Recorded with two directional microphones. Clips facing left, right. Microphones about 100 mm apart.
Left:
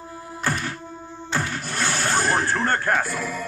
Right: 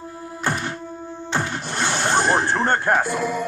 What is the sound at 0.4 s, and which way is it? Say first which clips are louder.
Music: right 2 dB; 25° right (ahead or behind).